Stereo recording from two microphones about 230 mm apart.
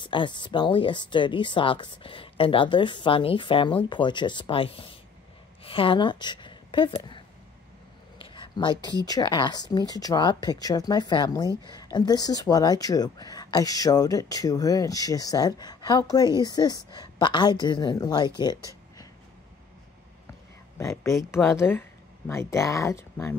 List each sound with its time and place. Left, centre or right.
0.0 s speech: left
8.2 s a sound: left
9.0 s speech: centre
20.7 s speech: centre